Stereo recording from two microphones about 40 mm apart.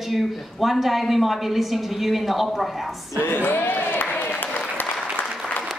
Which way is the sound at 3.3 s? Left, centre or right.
Left.